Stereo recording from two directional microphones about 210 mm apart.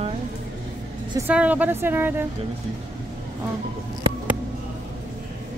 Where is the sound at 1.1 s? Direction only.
10° right (ahead or behind).